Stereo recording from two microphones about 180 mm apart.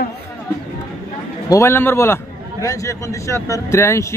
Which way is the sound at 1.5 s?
15° left (ahead or behind).